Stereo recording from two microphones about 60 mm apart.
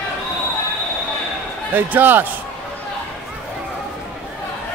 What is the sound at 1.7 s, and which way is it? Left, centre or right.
Speech, right.